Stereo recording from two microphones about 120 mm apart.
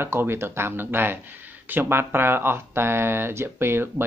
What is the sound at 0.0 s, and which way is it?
Speech, 20° right (ahead or behind).